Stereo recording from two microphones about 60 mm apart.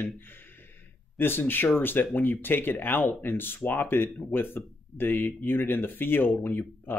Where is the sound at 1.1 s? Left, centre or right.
Left.